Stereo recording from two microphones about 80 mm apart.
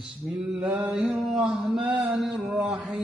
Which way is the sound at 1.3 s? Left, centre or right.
Centre.